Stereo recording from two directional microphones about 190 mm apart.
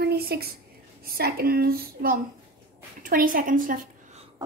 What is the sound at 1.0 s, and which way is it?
Speech, 50° right (ahead or behind).